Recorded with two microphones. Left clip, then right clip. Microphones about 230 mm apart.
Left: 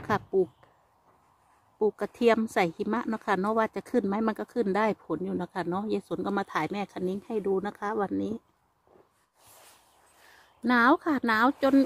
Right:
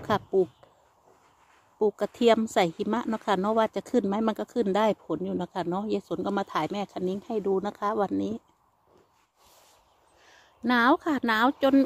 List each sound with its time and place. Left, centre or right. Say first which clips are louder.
0.0 s speech: right 2 dB; centre
1.8 s speech: right 2 dB; centre
10.3 s speech: even; centre